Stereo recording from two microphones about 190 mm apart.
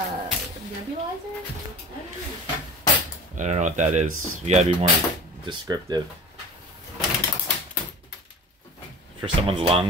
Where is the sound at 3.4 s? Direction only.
40° right (ahead or behind).